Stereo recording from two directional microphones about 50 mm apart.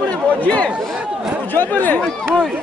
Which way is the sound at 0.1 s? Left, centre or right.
Left.